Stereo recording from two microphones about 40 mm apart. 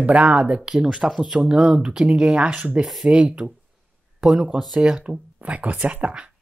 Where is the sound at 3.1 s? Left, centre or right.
Right.